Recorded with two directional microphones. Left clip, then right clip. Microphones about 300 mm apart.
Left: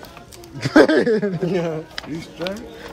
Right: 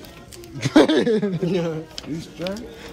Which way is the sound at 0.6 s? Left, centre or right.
Centre.